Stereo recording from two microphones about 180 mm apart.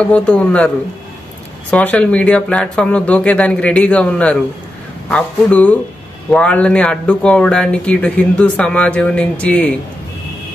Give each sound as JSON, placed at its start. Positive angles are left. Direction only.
{"t": 0.1, "sound": "speech", "side_deg": 5}
{"t": 1.7, "sound": "speech", "side_deg": 5}